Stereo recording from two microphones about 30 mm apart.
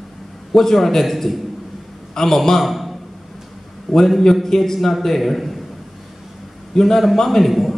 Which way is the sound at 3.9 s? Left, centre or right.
Centre.